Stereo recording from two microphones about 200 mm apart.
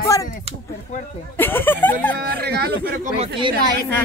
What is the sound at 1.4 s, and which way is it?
Speech, 10° left (ahead or behind).